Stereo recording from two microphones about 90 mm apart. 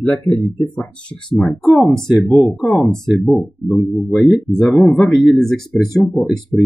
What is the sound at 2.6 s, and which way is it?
Speech, 5° left (ahead or behind).